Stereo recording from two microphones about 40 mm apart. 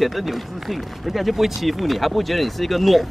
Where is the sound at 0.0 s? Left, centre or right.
Centre.